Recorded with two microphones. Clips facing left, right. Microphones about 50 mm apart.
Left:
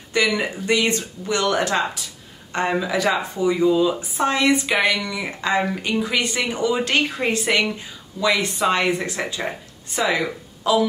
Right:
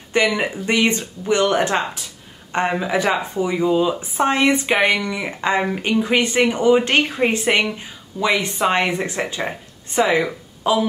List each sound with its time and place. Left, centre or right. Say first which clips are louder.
0.1 s speech: right 2 dB; right